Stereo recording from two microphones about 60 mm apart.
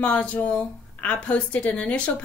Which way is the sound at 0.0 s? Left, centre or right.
Left.